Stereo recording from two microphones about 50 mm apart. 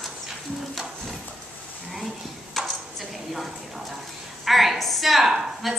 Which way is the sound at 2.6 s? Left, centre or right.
Centre.